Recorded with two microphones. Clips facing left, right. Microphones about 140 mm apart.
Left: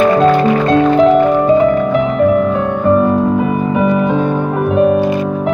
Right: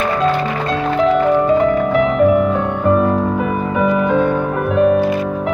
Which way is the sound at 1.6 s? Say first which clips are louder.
Left 2 dB; 5° left (ahead or behind).